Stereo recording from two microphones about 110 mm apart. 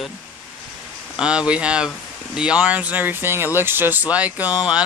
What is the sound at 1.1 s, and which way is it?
Speech, 10° right (ahead or behind).